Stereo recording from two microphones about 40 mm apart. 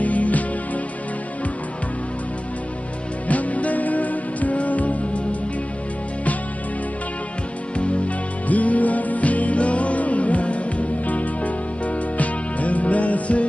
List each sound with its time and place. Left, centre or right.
0.0 s music: left
3.3 s music: left
7.7 s music: left